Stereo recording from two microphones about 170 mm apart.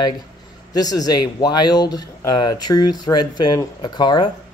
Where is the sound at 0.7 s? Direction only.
20° left (ahead or behind).